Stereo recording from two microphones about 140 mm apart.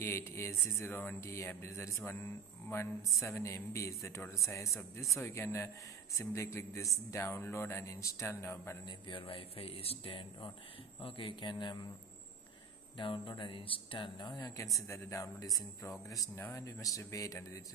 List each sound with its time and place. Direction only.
0.0 s speech: 20° left (ahead or behind)
8.8 s speech: 35° left (ahead or behind)
12.9 s speech: 35° left (ahead or behind)